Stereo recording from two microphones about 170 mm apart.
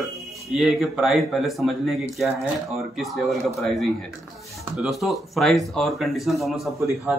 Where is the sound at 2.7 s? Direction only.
Centre (ahead or behind).